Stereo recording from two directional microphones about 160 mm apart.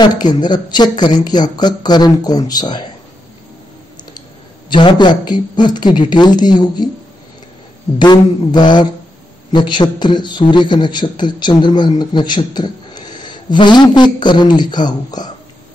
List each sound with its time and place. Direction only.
0.0 s a man's voice: 25° left (ahead or behind)
4.6 s a man's voice: 30° left (ahead or behind)
8.0 s a man's voice: 25° left (ahead or behind)